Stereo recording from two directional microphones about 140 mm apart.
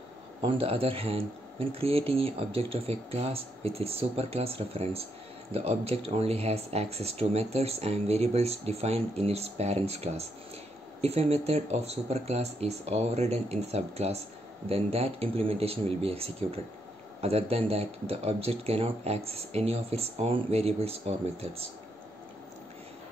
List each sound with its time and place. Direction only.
0.4 s speech: 40° right (ahead or behind)